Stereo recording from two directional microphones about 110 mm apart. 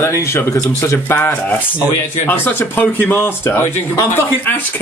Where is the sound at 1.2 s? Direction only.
15° left (ahead or behind).